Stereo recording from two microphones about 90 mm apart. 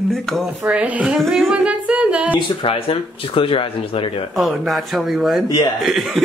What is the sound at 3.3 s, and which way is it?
Speech, 85° left.